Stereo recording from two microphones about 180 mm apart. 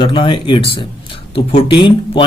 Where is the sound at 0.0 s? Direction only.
25° left (ahead or behind).